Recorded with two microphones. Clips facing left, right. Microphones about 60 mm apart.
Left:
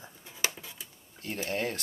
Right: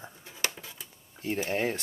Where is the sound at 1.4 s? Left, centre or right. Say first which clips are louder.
Right 2 dB; centre.